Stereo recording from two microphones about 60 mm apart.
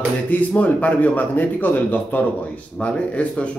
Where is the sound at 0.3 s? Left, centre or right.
Left.